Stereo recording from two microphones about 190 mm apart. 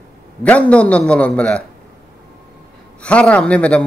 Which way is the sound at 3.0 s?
5° left (ahead or behind).